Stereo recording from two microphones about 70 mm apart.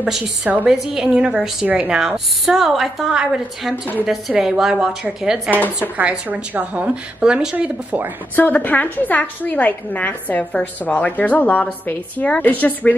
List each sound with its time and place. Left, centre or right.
0.0 s a woman's voice: centre
8.4 s a woman's voice: left